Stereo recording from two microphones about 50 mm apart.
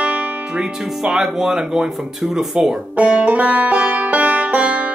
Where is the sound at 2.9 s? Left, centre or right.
Right.